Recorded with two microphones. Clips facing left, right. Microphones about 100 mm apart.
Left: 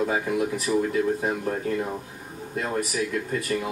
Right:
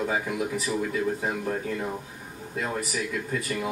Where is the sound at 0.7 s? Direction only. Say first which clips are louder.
Left 7 dB; 25° left (ahead or behind).